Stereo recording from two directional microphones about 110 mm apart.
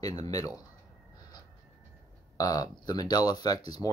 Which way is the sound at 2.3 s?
35° left (ahead or behind).